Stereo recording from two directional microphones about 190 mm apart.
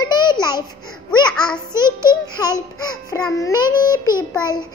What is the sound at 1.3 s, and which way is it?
Speech, 5° left (ahead or behind).